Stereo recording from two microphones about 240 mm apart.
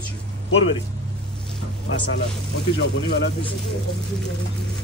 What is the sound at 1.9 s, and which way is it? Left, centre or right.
Speech, left.